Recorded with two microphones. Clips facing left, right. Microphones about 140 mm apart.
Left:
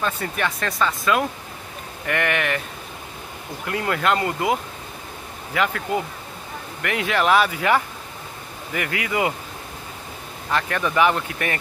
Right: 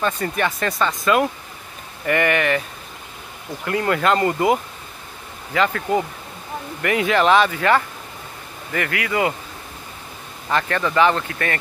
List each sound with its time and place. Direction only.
0.0 s speech: centre (ahead or behind)
3.6 s speech: centre (ahead or behind); by 9.3 s 20° left (ahead or behind)
10.5 s speech: 5° left (ahead or behind)